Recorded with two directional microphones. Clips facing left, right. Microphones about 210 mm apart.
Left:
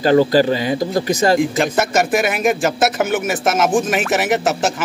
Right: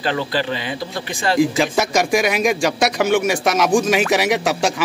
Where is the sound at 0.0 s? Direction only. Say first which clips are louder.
Left 9 dB; 40° left (ahead or behind).